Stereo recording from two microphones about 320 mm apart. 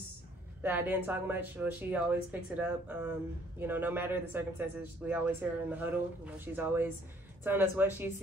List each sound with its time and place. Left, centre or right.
0.6 s speech: centre